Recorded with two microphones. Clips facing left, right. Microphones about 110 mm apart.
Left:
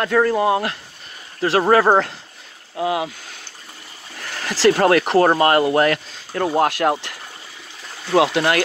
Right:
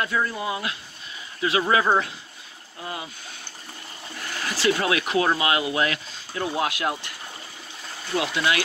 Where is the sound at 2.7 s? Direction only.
75° left (ahead or behind).